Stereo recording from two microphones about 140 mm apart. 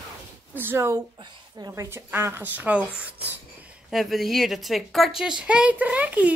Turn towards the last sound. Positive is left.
turn(degrees=-10)  # may be behind; listen again after turning